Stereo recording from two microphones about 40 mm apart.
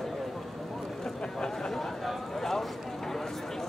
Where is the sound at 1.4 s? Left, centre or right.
Centre.